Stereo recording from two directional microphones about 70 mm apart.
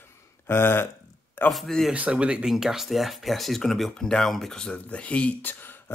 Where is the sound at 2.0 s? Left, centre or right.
Centre.